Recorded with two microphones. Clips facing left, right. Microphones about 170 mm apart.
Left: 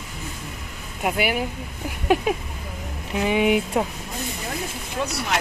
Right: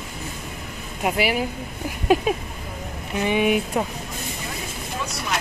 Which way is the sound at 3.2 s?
15° left (ahead or behind).